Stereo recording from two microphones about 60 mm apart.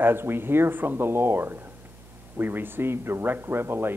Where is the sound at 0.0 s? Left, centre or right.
Right.